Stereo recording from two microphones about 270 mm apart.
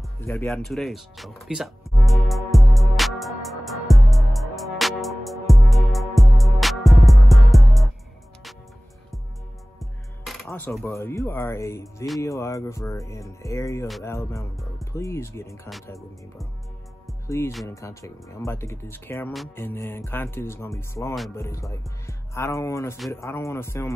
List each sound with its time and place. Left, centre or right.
0.2 s music: centre
9.8 s speech: centre
13.8 s music: centre
14.1 s speech: centre
14.6 s music: centre
15.0 s speech: centre
17.5 s music: centre
17.7 s speech: centre